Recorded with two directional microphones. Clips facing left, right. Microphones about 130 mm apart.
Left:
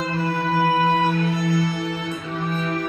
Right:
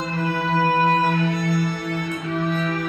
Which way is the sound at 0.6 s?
10° left (ahead or behind).